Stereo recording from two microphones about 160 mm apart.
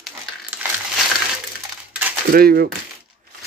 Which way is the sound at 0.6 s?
10° right (ahead or behind).